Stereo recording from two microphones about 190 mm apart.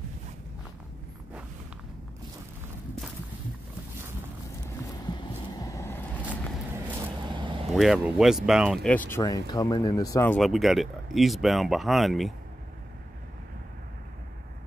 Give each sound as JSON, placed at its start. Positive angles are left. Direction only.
{"t": 4.6, "sound": "a sound", "side_deg": 20}
{"t": 5.6, "sound": "vehicle", "side_deg": 15}
{"t": 6.7, "sound": "vehicle", "side_deg": -20}
{"t": 7.6, "sound": "speech", "side_deg": 0}
{"t": 10.3, "sound": "speech", "side_deg": 0}